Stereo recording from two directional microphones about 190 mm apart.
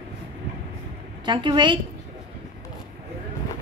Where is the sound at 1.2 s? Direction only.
25° right (ahead or behind).